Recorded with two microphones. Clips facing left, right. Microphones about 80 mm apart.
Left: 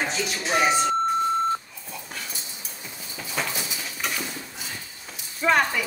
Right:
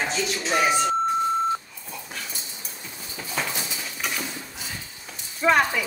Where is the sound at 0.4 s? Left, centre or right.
Centre.